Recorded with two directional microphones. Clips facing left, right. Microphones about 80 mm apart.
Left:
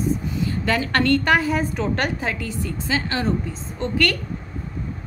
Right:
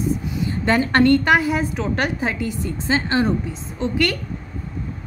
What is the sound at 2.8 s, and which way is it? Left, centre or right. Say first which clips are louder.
Speech: right 5 dB; right.